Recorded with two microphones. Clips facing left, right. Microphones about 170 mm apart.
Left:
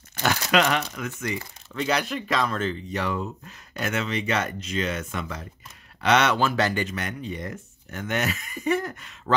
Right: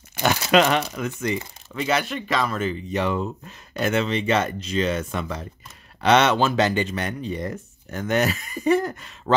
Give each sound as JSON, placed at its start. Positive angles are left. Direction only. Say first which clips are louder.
{"t": 0.1, "sound": "speech", "louder": "right 4 dB", "side_deg": -15}
{"t": 1.7, "sound": "speech", "louder": "right 2 dB", "side_deg": -5}
{"t": 2.9, "sound": "speech", "louder": "right 4 dB", "side_deg": -20}